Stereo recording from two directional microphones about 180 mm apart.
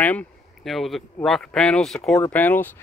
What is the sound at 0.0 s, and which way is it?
Speech, 10° left (ahead or behind).